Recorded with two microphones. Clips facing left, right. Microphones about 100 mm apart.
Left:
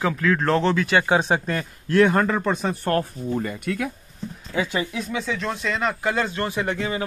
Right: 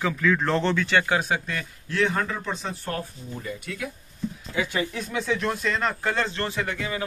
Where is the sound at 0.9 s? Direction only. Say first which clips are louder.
Left 4 dB; 20° left (ahead or behind); by 3.8 s 60° left (ahead or behind).